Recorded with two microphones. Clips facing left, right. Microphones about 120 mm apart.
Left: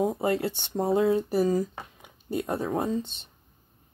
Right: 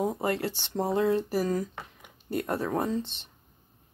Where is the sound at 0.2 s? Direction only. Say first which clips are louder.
Left 3 dB; 20° left (ahead or behind).